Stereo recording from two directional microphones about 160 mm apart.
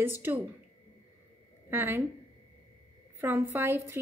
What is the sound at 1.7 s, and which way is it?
Speech, 15° right (ahead or behind).